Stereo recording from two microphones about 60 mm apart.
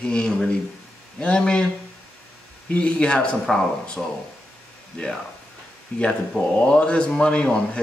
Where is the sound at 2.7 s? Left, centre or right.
Centre.